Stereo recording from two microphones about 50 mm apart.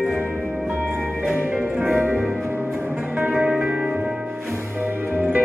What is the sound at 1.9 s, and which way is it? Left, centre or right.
Music, right.